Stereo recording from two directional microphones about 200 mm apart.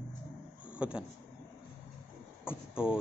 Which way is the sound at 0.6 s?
5° right (ahead or behind).